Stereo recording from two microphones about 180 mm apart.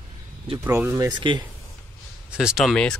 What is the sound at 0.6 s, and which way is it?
Speech, 15° right (ahead or behind).